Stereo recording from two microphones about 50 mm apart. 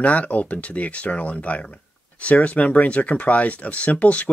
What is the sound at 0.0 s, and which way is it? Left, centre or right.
Speech, left.